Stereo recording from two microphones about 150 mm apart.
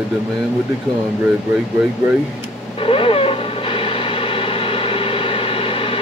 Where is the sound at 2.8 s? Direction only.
35° left (ahead or behind).